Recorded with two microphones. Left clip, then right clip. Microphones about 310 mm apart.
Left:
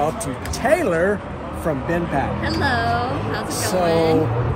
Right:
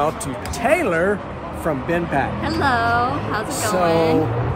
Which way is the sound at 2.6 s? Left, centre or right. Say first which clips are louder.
Right 3 dB; centre.